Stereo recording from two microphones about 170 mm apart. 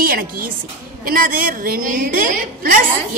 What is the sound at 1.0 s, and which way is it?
A woman's voice, 55° right (ahead or behind).